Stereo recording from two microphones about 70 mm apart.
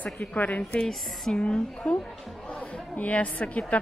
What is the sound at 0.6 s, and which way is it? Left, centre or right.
A woman's voice, centre.